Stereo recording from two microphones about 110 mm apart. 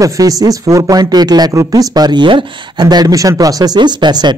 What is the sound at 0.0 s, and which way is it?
Speech, 30° right (ahead or behind).